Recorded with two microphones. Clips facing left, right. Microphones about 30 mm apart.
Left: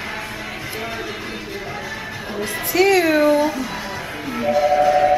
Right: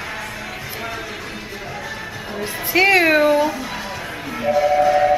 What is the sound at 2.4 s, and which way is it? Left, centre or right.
Speech, right.